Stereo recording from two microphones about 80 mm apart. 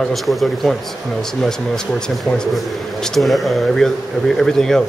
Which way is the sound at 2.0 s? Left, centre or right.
Centre.